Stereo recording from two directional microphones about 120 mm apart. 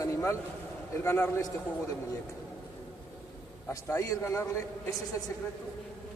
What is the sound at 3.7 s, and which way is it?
Speech, 25° left (ahead or behind).